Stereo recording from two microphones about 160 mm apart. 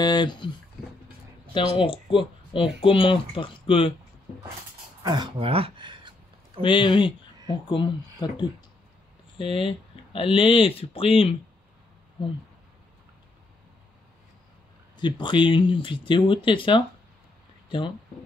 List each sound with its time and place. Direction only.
0.0 s speech: 25° left (ahead or behind)
1.5 s speech: 35° left (ahead or behind)
5.0 s a sound: 30° right (ahead or behind)
6.6 s speech: 30° left (ahead or behind)
15.0 s speech: 30° left (ahead or behind)